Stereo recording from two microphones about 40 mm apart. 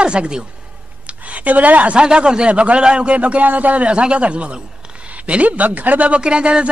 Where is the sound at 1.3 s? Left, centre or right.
Right.